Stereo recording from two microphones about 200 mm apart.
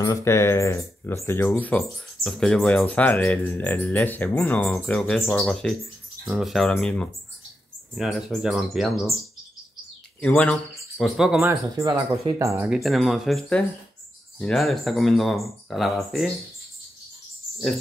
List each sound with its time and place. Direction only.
0.0 s speech: 15° left (ahead or behind)
10.2 s speech: 5° left (ahead or behind)
11.8 s speech: 20° right (ahead or behind)
12.6 s speech: centre (ahead or behind)